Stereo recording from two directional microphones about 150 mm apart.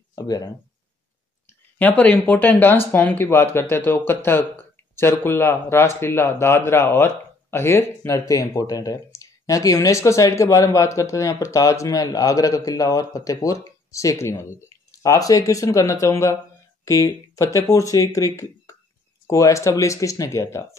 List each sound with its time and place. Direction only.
0.1 s speech: 25° left (ahead or behind)
1.8 s speech: 10° left (ahead or behind)